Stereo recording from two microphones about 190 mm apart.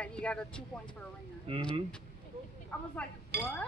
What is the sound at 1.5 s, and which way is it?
Speech, 30° right (ahead or behind).